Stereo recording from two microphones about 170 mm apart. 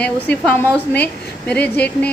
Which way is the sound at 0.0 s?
10° left (ahead or behind).